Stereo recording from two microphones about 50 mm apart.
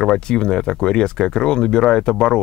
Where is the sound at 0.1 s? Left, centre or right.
Centre.